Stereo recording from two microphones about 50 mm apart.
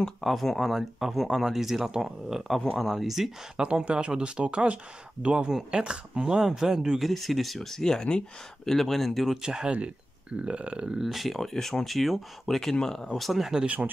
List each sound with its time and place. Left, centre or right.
0.2 s speech: centre
3.6 s speech: right
7.1 s speech: centre
9.4 s speech: centre
11.0 s speech: centre